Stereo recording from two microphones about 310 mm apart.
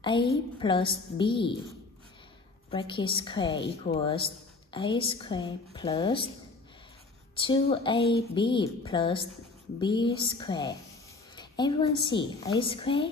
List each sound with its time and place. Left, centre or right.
0.0 s a woman's voice: centre
2.7 s a woman's voice: centre
3.5 s speech: left
3.9 s a woman's voice: centre
7.3 s a woman's voice: centre